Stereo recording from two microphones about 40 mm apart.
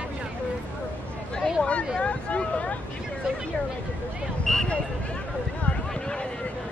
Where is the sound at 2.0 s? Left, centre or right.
Left.